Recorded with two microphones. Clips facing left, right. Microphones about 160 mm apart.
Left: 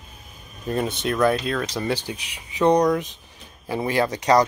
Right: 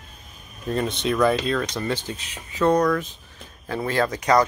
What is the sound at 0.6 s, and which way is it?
Speech, 5° left (ahead or behind).